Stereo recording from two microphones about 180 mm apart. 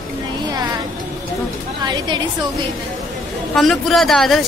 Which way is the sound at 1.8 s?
25° right (ahead or behind).